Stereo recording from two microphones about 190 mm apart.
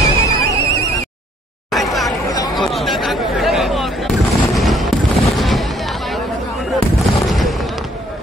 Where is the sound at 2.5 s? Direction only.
Centre (ahead or behind).